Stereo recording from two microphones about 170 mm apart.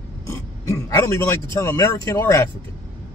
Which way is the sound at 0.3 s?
15° left (ahead or behind).